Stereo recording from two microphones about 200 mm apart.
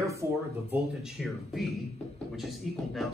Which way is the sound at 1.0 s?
Centre (ahead or behind).